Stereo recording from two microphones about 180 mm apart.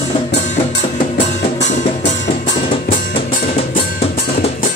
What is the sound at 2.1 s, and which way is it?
Music, 40° left (ahead or behind).